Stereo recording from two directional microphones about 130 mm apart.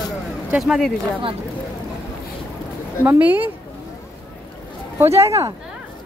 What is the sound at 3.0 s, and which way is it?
Speech, 15° right (ahead or behind).